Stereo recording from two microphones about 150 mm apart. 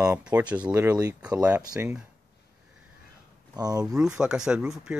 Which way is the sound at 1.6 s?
25° right (ahead or behind).